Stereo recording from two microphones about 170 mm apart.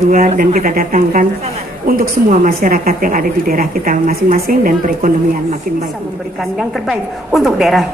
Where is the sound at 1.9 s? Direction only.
55° right (ahead or behind).